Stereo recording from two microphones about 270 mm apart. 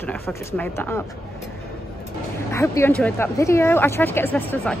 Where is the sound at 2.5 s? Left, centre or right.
Centre.